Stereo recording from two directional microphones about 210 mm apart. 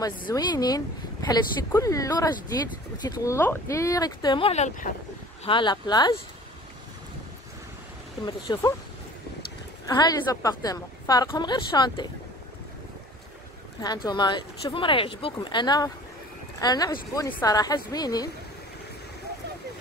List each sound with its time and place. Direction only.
0.3 s speech: 20° left (ahead or behind); by 4.9 s 35° left (ahead or behind)
5.4 s a woman's voice: 25° left (ahead or behind)
8.3 s a woman's voice: 20° left (ahead or behind)
9.8 s a woman's voice: 15° left (ahead or behind)
13.7 s a woman's voice: 20° left (ahead or behind)